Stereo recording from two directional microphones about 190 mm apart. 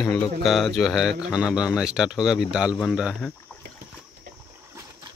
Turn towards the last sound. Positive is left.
turn(degrees=0)  # may be behind; listen again after turning